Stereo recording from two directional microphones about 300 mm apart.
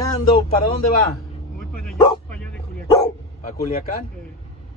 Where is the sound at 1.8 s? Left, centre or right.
Centre.